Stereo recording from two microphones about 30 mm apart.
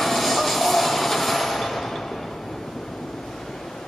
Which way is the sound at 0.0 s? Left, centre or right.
Centre.